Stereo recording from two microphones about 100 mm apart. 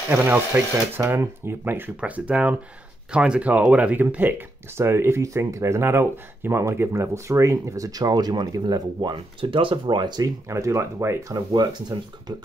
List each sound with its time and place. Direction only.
0.1 s speech: 20° right (ahead or behind); by 9.1 s 40° right (ahead or behind)
9.1 s speech: 60° right (ahead or behind)
10.5 s speech: 30° right (ahead or behind)
11.3 s speech: 45° right (ahead or behind)